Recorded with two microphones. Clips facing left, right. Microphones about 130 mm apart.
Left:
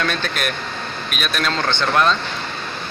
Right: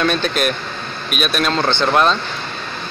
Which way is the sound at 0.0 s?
20° right (ahead or behind).